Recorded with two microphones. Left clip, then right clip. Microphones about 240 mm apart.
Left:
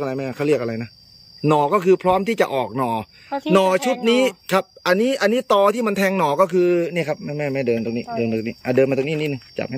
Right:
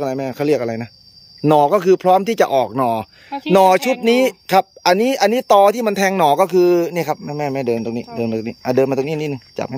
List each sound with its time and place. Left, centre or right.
0.0 s speech: centre
3.3 s speech: left
3.5 s speech: centre